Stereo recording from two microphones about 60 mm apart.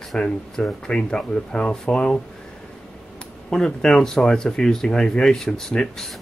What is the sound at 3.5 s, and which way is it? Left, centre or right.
Speech, centre.